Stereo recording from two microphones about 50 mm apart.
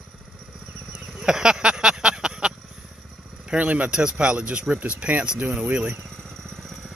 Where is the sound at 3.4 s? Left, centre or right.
Right.